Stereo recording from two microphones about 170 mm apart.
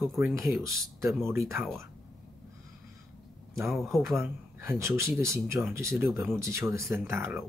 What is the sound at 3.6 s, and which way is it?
Speech, centre (ahead or behind).